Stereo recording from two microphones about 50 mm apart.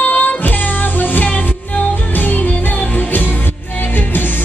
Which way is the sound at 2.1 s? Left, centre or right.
Left.